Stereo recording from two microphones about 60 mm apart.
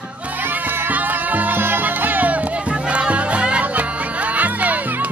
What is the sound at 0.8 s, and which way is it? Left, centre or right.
Music, right.